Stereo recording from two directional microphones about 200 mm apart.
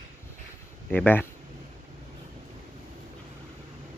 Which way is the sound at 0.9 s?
10° left (ahead or behind).